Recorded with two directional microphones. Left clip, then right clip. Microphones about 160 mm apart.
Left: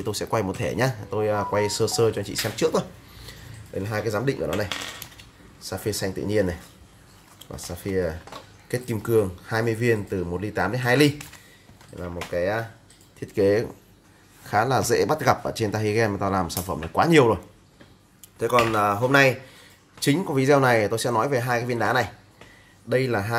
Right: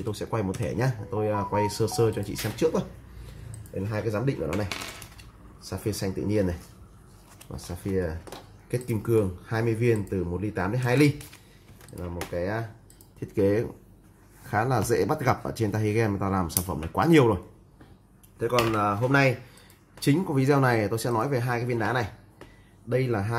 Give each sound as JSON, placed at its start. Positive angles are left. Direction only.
{"t": 0.0, "sound": "speech", "side_deg": 20}
{"t": 3.8, "sound": "speech", "side_deg": 20}
{"t": 7.5, "sound": "speech", "side_deg": 10}
{"t": 18.4, "sound": "speech", "side_deg": 15}